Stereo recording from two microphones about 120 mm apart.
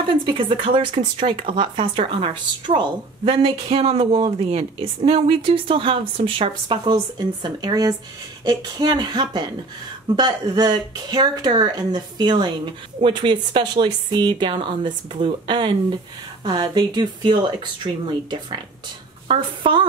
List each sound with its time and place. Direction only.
0.0 s a woman's voice: 45° right (ahead or behind)